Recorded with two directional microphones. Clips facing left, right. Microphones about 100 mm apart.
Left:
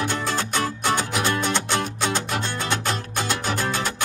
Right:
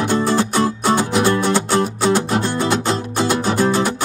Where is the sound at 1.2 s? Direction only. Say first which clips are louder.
Right 7 dB; 40° right (ahead or behind).